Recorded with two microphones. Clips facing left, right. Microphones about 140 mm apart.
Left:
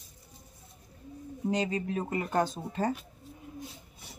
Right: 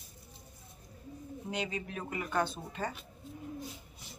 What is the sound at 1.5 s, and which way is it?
Speech, 40° left (ahead or behind).